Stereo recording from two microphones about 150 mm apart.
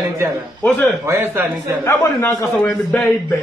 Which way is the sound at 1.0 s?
15° right (ahead or behind).